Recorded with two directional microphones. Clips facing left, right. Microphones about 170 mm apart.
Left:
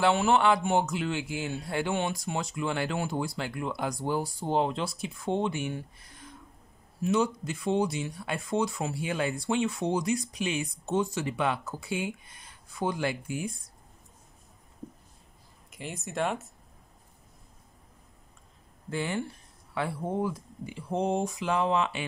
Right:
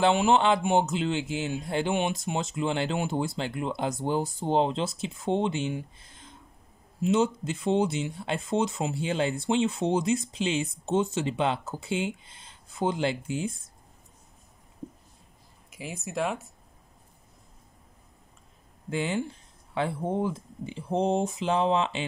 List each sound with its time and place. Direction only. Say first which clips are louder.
0.0 s speech: right 2 dB; 20° right (ahead or behind)
15.7 s speech: right 2 dB; centre (ahead or behind)
18.9 s speech: right 3 dB; 15° right (ahead or behind)